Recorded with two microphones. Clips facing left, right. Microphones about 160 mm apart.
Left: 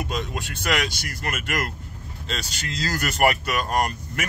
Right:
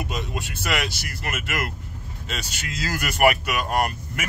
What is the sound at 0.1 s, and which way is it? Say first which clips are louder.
Speech: left 1 dB; 5° right (ahead or behind).